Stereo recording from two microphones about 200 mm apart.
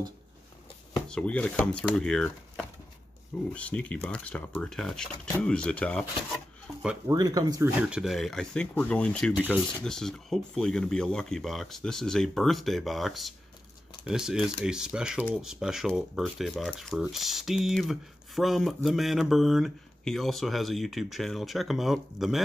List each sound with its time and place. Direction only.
1.0 s speech: 5° left (ahead or behind)
7.1 s speech: 20° right (ahead or behind)
7.9 s speech: centre (ahead or behind)